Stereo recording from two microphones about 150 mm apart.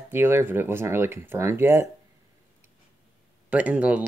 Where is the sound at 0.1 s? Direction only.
15° right (ahead or behind).